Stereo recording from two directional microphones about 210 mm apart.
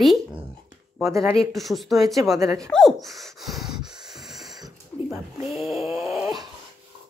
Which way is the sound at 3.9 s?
Centre (ahead or behind).